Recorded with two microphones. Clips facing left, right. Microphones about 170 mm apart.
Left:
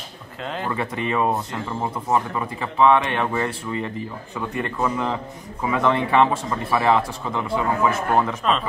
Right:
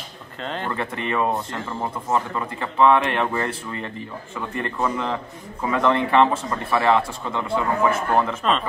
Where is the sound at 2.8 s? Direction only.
Centre (ahead or behind).